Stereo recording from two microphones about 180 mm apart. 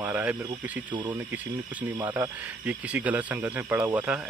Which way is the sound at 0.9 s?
25° right (ahead or behind).